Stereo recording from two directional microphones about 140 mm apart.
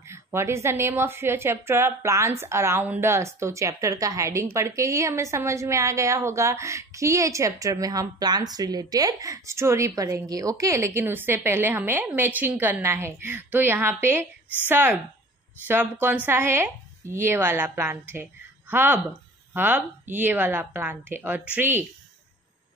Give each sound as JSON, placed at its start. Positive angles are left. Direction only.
{"t": 0.1, "sound": "a woman's voice", "side_deg": -20}